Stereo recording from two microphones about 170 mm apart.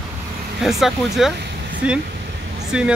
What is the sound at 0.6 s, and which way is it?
Speech, centre (ahead or behind).